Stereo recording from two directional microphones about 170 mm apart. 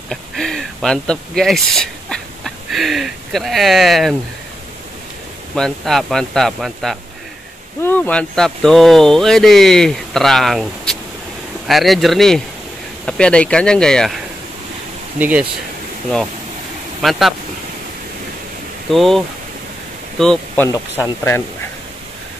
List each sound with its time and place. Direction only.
0.1 s speech: centre (ahead or behind)
5.6 s speech: centre (ahead or behind)
15.1 s speech: 10° right (ahead or behind)
17.0 s speech: centre (ahead or behind)
18.9 s speech: centre (ahead or behind)
20.6 s speech: 15° left (ahead or behind)